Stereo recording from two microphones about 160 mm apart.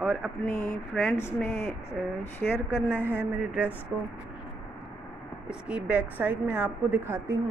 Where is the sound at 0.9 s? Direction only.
Centre (ahead or behind).